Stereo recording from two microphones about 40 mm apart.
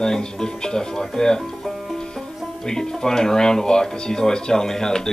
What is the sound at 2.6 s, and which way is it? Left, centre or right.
Speech, centre.